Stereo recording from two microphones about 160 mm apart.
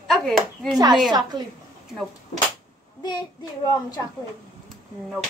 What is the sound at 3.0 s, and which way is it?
Child singing, 25° left (ahead or behind).